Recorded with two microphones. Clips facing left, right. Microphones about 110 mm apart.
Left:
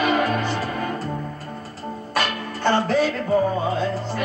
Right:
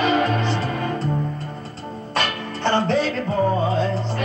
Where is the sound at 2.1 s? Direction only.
30° right (ahead or behind).